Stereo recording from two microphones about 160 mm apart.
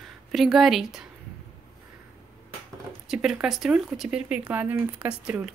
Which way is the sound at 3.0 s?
5° right (ahead or behind).